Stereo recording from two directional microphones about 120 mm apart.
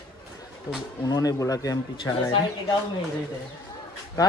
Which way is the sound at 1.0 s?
30° left (ahead or behind).